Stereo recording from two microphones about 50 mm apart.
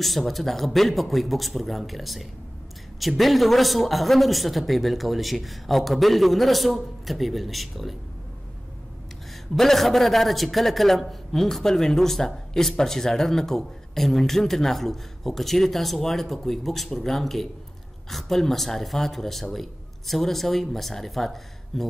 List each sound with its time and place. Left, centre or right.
0.0 s a man's voice: centre
9.6 s a man's voice: centre